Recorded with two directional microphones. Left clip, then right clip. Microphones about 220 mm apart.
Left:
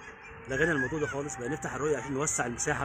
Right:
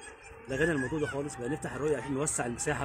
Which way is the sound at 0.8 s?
10° left (ahead or behind).